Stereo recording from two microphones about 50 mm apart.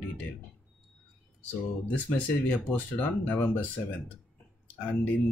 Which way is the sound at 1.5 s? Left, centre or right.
Left.